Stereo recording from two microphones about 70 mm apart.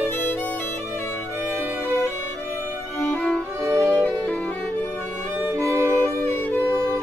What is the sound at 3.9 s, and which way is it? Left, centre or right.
Violin, centre.